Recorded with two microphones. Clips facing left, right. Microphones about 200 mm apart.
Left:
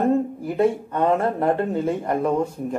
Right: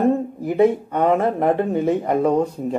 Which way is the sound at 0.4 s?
15° right (ahead or behind).